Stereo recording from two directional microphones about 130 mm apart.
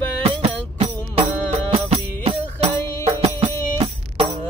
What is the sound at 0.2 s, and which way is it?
Music, 50° right (ahead or behind).